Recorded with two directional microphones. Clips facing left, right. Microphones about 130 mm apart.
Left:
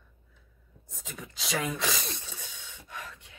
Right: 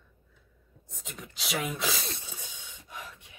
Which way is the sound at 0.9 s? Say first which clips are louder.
Left 1 dB; centre (ahead or behind).